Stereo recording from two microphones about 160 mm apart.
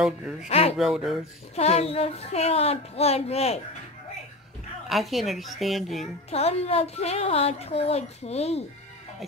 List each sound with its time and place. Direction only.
0.5 s a woman's voice: 40° left (ahead or behind)
0.7 s speech: centre (ahead or behind)
1.5 s a woman's voice: 40° left (ahead or behind)
4.8 s speech: centre (ahead or behind)
6.3 s a woman's voice: 40° left (ahead or behind)